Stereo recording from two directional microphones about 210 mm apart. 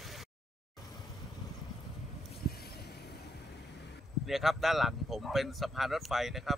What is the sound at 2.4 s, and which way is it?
Vehicle, 50° left (ahead or behind).